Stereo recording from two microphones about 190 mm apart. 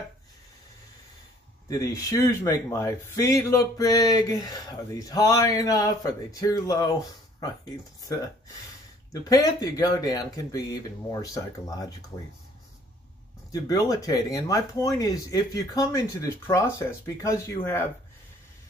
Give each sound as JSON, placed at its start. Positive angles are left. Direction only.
{"t": 1.7, "sound": "speech", "side_deg": 15}
{"t": 13.5, "sound": "speech", "side_deg": 20}